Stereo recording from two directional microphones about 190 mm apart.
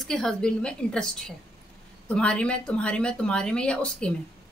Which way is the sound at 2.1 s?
5° left (ahead or behind).